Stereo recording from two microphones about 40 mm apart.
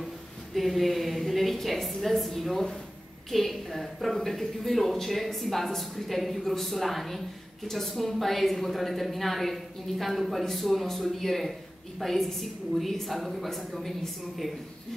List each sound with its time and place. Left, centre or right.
0.6 s a woman's voice: centre